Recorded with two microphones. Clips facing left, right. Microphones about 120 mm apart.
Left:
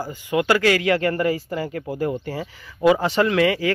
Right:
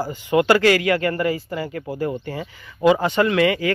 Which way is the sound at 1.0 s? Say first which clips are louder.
Even; 35° left (ahead or behind).